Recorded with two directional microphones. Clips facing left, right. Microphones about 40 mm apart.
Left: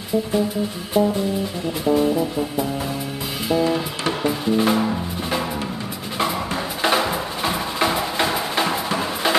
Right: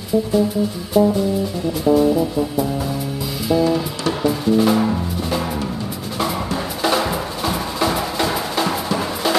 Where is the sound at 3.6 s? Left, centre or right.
Left.